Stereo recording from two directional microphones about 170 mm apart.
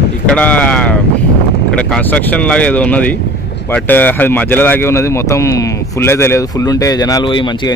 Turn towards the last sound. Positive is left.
turn(degrees=25)  # may be behind; listen again after turning